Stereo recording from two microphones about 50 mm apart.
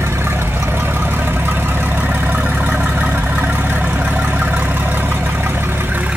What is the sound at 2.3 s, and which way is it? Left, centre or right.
Vehicle, right.